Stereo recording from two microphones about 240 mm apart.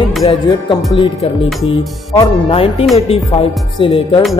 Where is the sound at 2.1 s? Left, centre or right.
Centre.